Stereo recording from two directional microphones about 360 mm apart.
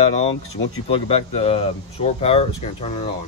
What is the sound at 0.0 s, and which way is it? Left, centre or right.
Speech, centre.